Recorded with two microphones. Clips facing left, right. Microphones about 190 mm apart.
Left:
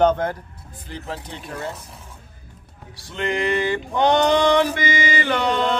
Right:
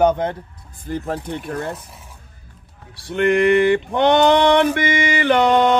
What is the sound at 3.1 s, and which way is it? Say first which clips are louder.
Male singing: right 8 dB; 55° right (ahead or behind).